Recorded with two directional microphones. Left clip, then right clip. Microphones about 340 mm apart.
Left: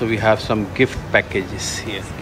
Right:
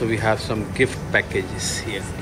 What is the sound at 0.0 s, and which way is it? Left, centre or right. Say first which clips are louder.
A man's voice: left 4 dB; centre.